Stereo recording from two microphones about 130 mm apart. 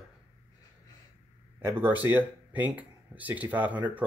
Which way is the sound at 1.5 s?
15° right (ahead or behind).